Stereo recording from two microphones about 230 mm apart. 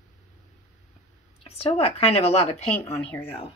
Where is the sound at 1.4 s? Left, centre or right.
Left.